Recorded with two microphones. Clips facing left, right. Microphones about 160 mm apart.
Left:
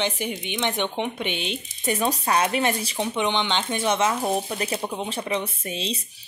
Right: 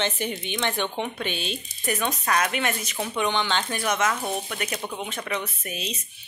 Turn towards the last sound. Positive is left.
turn(degrees=30)  # may be behind; listen again after turning